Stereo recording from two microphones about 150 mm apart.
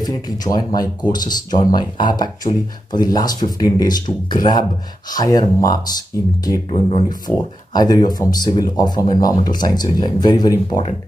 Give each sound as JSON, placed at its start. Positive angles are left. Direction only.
{"t": 0.0, "sound": "speech", "side_deg": 25}
{"t": 6.7, "sound": "speech", "side_deg": 40}
{"t": 7.1, "sound": "speech", "side_deg": 25}